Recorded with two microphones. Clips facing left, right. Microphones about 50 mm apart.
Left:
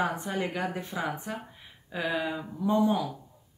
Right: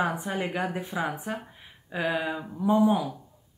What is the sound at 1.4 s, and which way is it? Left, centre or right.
Speech, centre.